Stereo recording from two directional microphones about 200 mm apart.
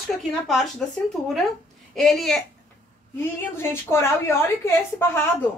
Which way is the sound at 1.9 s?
Centre (ahead or behind).